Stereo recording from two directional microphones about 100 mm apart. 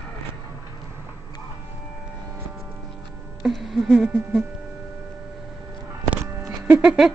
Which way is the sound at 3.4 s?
Centre (ahead or behind).